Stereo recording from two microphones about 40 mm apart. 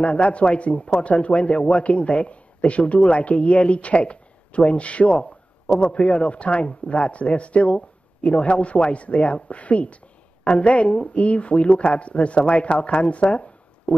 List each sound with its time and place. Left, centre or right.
0.0 s speech: left
5.1 s speech: left